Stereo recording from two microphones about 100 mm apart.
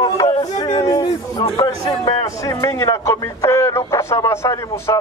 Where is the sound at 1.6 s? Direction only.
40° left (ahead or behind).